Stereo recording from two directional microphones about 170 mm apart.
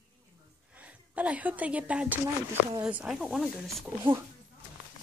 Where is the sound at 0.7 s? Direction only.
10° right (ahead or behind).